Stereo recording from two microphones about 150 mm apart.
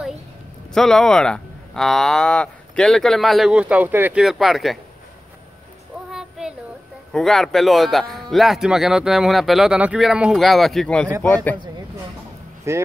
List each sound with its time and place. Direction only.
0.7 s speech: 5° left (ahead or behind)
6.1 s a sound: 5° right (ahead or behind)
7.1 s a man's voice: 5° left (ahead or behind)
12.7 s speech: 20° right (ahead or behind)